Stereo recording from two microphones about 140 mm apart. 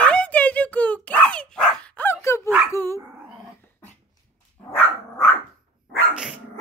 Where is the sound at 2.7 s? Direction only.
20° left (ahead or behind).